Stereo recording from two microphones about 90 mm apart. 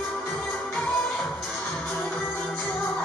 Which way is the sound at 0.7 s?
5° left (ahead or behind).